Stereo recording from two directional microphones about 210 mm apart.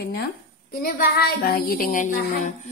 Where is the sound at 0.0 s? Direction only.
45° left (ahead or behind).